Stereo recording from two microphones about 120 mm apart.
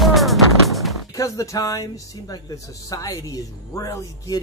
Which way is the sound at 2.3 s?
30° left (ahead or behind).